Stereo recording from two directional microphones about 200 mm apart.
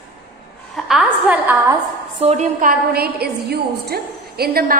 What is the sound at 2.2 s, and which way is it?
A woman's voice, 35° right (ahead or behind).